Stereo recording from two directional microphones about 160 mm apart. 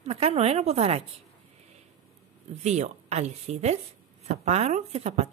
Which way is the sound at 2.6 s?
45° right (ahead or behind).